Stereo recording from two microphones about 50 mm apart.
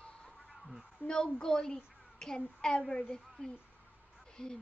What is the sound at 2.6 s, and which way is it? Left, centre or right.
Speech, centre.